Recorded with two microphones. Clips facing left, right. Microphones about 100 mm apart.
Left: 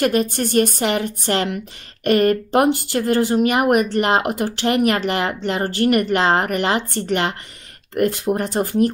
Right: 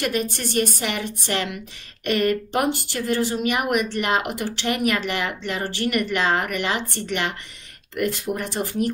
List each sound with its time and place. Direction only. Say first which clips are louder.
0.0 s speech: left 6 dB; 45° left (ahead or behind)